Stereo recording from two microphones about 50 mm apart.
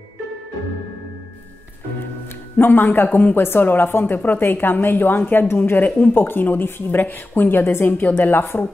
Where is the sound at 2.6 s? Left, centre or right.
Left.